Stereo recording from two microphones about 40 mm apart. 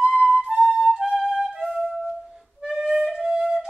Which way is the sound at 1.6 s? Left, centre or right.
Centre.